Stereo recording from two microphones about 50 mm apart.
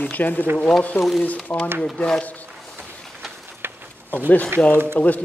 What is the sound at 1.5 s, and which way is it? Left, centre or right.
Speech, left.